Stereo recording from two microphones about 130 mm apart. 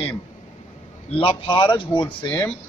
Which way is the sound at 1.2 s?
45° left (ahead or behind).